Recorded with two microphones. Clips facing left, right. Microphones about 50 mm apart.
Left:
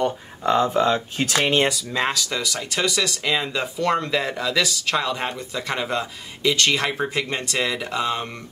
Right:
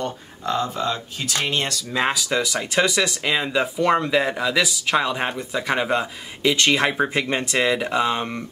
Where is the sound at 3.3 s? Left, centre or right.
Centre.